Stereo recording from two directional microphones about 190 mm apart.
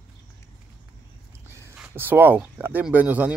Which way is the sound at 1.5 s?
10° right (ahead or behind).